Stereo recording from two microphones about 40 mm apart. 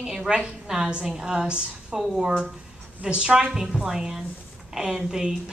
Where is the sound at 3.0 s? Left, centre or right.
Right.